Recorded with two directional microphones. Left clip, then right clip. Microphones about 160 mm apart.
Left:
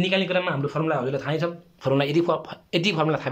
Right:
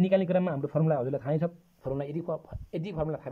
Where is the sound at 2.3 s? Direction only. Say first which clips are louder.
Left 10 dB; 40° right (ahead or behind).